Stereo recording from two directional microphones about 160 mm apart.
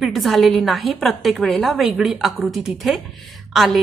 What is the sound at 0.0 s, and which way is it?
A woman's voice, centre (ahead or behind).